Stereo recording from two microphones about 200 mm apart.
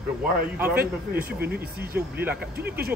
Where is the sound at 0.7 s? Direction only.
50° right (ahead or behind).